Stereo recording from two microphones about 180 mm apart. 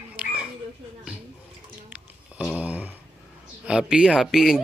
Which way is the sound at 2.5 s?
5° right (ahead or behind).